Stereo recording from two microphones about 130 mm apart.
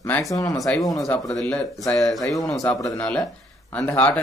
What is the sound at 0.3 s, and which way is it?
Speech, 25° left (ahead or behind).